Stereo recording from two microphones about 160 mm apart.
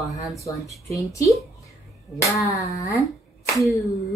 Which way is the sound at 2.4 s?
20° left (ahead or behind).